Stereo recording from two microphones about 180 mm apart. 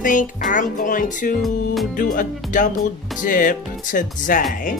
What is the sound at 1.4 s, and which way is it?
Music, centre (ahead or behind).